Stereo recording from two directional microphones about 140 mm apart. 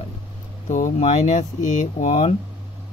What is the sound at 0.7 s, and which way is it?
Speech, 65° left (ahead or behind).